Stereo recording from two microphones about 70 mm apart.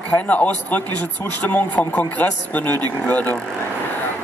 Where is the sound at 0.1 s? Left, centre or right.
Left.